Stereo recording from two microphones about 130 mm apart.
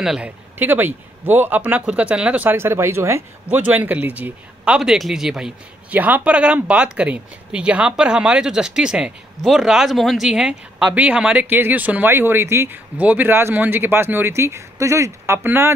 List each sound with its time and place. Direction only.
0.0 s speech: 5° right (ahead or behind)
0.6 s a man's voice: 15° right (ahead or behind)